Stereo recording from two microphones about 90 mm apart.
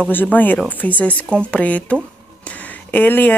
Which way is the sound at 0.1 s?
20° left (ahead or behind).